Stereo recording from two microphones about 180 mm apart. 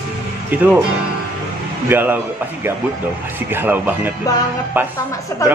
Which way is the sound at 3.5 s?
10° right (ahead or behind).